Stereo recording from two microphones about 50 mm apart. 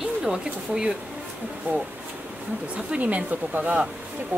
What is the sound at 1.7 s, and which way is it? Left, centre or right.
Speech, right.